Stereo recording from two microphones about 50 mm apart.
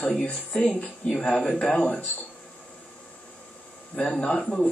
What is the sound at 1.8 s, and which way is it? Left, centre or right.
Speech, left.